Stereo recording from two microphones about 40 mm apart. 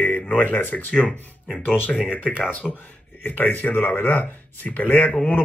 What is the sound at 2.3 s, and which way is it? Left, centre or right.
Speech, left.